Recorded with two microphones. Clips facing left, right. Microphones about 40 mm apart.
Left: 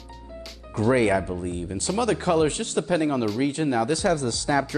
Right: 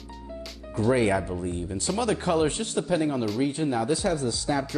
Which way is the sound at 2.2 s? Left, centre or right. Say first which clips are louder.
Left 2 dB; left.